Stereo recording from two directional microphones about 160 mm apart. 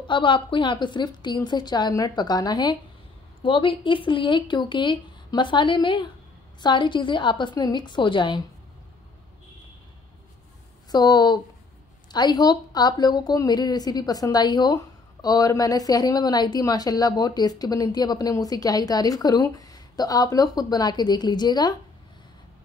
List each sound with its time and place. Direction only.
0.0 s a woman's voice: 30° left (ahead or behind)
10.9 s a woman's voice: 25° left (ahead or behind)